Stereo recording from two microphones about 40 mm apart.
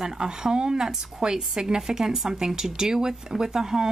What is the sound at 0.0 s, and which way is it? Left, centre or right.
Speech, centre.